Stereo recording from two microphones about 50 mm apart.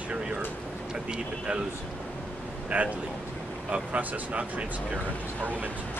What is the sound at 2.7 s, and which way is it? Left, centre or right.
Speech, right.